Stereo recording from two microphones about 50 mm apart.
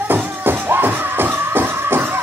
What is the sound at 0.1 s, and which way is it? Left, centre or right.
Music, right.